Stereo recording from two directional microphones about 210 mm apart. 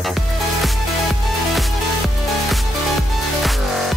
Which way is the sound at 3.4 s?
Centre (ahead or behind).